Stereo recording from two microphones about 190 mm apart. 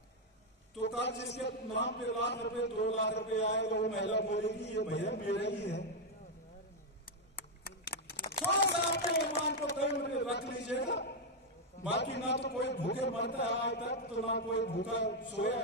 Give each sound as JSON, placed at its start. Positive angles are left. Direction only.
{"t": 0.7, "sound": "a man's voice", "side_deg": 65}
{"t": 7.3, "sound": "a sound", "side_deg": 55}
{"t": 9.8, "sound": "a man's voice", "side_deg": 65}